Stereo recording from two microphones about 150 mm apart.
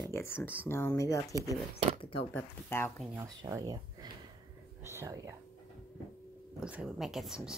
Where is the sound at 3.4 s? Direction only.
25° right (ahead or behind).